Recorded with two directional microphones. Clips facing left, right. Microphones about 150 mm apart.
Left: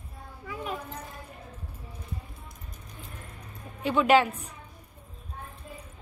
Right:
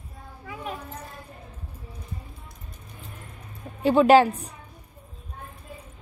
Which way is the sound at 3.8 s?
35° right (ahead or behind).